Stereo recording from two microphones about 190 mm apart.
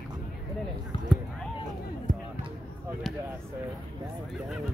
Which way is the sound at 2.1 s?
45° right (ahead or behind).